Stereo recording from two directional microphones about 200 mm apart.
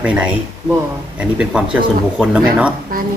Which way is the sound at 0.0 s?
5° right (ahead or behind).